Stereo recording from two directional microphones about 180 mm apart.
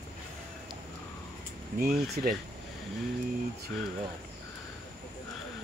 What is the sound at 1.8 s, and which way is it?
Speech, 60° right (ahead or behind).